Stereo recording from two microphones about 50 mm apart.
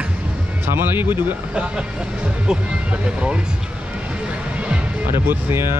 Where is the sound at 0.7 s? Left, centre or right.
Right.